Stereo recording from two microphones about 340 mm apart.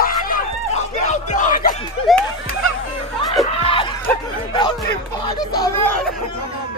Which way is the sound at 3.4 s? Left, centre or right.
Centre.